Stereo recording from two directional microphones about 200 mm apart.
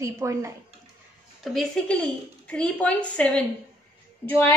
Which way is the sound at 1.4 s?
Centre (ahead or behind).